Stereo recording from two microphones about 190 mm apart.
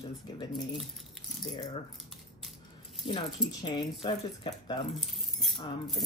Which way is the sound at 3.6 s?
25° left (ahead or behind).